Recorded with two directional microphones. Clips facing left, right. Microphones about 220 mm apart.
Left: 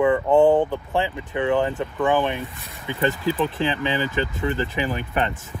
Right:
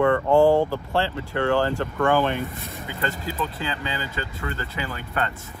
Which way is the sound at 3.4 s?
15° left (ahead or behind).